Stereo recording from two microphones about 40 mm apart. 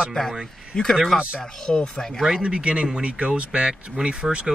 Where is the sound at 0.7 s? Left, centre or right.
Centre.